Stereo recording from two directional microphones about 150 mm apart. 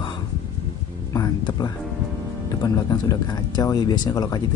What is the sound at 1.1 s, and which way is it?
Speech, 25° left (ahead or behind).